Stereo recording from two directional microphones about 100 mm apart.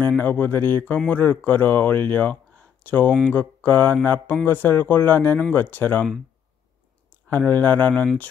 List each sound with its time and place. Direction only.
0.2 s speech: 20° left (ahead or behind)
3.1 s speech: 5° right (ahead or behind)
3.3 s a sound: 20° left (ahead or behind)
7.3 s speech: 20° left (ahead or behind)